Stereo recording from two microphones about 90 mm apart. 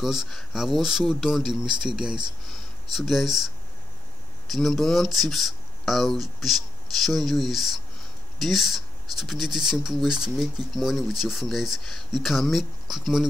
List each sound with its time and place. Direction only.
0.0 s speech: 5° right (ahead or behind)